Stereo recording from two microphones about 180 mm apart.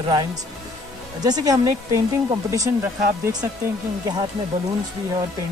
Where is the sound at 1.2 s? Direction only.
20° right (ahead or behind).